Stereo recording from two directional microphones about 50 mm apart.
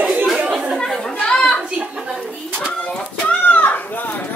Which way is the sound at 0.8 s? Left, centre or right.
Centre.